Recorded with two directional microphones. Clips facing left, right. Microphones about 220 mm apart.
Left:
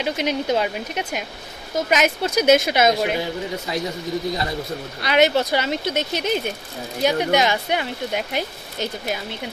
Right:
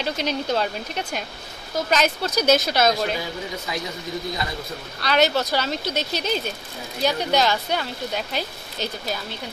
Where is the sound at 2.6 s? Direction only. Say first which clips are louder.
Left 2 dB; 20° left (ahead or behind).